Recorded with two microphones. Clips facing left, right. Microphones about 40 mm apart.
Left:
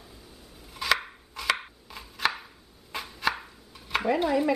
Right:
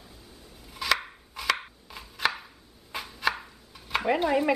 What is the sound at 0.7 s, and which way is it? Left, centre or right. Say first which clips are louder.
Chopping: left 1 dB; centre.